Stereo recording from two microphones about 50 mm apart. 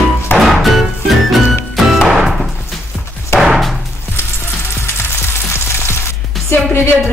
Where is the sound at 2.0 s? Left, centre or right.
Centre.